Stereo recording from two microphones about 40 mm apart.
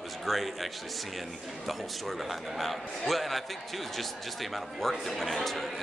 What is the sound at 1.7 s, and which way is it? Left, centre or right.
Speech, centre.